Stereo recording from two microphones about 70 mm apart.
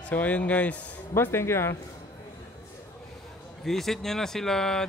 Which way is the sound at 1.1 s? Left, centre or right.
Left.